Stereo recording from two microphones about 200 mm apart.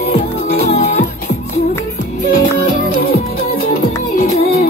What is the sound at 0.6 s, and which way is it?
Music, 35° left (ahead or behind).